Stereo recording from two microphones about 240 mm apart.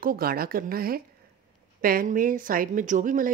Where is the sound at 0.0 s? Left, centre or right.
Right.